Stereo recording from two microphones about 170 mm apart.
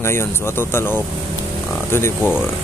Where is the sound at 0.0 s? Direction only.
15° left (ahead or behind).